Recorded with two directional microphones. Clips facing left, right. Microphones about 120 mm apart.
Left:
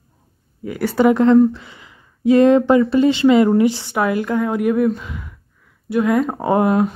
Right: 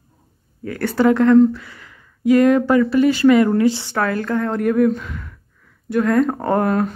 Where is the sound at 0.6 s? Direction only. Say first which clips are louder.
Left 1 dB; 10° left (ahead or behind).